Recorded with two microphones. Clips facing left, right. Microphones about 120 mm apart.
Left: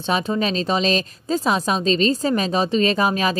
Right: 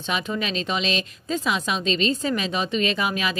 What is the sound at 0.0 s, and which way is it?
Speech, 35° left (ahead or behind).